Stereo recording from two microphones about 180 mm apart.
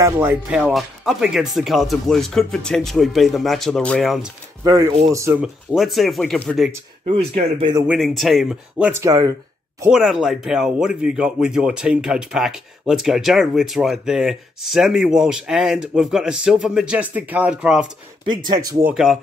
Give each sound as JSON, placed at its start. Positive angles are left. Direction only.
{"t": 0.0, "sound": "speech", "side_deg": -10}
{"t": 4.6, "sound": "speech", "side_deg": -20}
{"t": 5.4, "sound": "speech", "side_deg": -5}
{"t": 7.1, "sound": "speech", "side_deg": -35}
{"t": 7.8, "sound": "speech", "side_deg": 0}
{"t": 9.0, "sound": "speech", "side_deg": -20}
{"t": 9.8, "sound": "speech", "side_deg": -5}
{"t": 18.2, "sound": "speech", "side_deg": -25}